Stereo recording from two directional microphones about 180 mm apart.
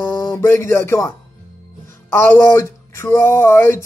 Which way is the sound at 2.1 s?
15° left (ahead or behind).